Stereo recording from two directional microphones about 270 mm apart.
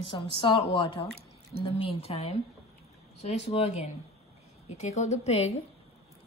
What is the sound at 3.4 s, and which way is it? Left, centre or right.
A woman's voice, left.